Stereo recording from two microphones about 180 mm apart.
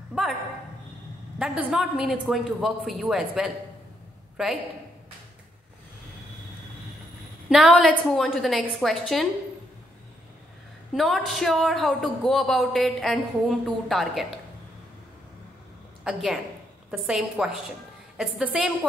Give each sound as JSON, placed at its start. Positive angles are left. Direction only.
{"t": 0.1, "sound": "a sound", "side_deg": 0}
{"t": 1.4, "sound": "a woman's voice", "side_deg": -5}
{"t": 7.4, "sound": "a woman's voice", "side_deg": -5}
{"t": 11.0, "sound": "a woman's voice", "side_deg": 0}
{"t": 16.0, "sound": "a woman's voice", "side_deg": 0}